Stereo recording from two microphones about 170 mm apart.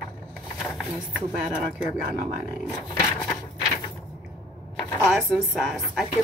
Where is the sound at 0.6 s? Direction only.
Centre (ahead or behind).